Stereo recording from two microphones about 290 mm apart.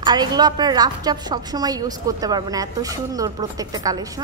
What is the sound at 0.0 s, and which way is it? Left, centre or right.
A woman's voice, centre.